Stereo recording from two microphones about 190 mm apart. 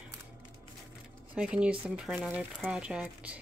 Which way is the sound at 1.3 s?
5° right (ahead or behind).